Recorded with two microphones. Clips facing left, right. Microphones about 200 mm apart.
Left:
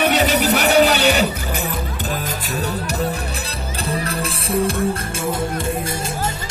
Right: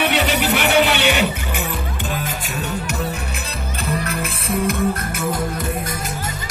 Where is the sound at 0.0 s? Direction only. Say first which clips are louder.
Left 2 dB; 40° left (ahead or behind).